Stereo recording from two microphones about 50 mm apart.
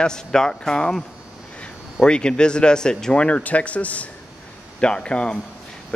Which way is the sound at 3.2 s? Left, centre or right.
Left.